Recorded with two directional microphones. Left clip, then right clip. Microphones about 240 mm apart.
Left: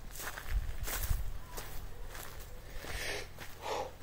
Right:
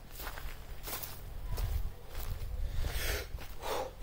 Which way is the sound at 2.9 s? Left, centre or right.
Right.